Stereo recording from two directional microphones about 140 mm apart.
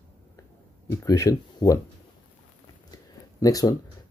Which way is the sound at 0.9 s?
20° left (ahead or behind).